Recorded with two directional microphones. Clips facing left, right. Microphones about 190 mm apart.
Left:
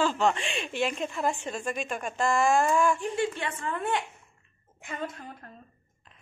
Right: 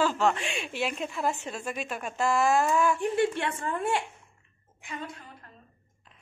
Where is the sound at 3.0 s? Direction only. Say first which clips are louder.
Right 3 dB; 60° right (ahead or behind).